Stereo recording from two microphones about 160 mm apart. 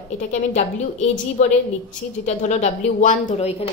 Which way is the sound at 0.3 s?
45° left (ahead or behind).